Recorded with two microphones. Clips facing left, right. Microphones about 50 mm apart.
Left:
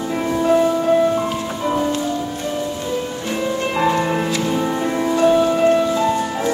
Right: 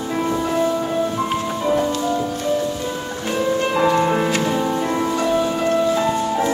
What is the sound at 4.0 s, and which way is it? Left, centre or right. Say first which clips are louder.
Music: right 2 dB; centre.